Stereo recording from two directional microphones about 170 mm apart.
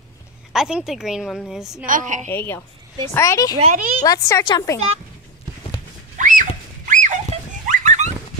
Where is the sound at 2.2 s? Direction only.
15° left (ahead or behind).